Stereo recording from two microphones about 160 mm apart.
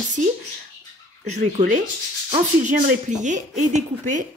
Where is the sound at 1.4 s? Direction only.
45° right (ahead or behind).